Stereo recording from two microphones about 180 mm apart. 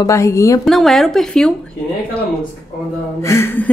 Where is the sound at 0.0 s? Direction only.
15° left (ahead or behind).